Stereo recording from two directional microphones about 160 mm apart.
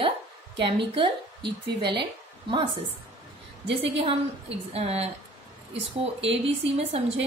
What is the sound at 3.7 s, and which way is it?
Speech, 35° right (ahead or behind).